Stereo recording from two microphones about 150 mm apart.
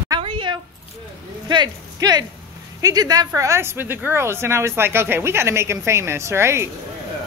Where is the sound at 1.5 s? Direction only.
30° right (ahead or behind).